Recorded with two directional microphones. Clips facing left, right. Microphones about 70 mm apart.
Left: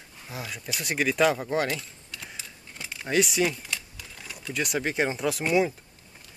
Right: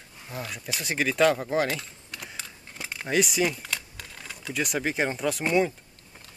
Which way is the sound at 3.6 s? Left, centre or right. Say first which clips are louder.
Right 1 dB; right.